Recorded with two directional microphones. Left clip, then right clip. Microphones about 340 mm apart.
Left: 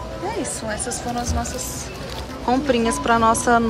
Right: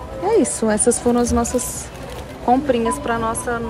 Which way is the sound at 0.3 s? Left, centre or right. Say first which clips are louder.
Right 11 dB; centre.